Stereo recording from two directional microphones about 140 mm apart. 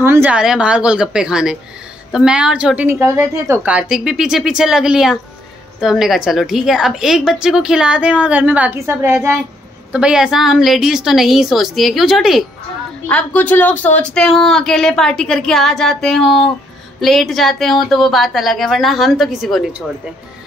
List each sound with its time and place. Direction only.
0.0 s a woman's voice: 15° right (ahead or behind)
9.9 s speech: 5° right (ahead or behind)
13.1 s speech: 10° left (ahead or behind)